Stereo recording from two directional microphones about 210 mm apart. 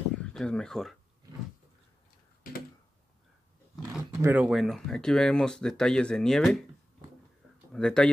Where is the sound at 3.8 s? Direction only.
10° right (ahead or behind).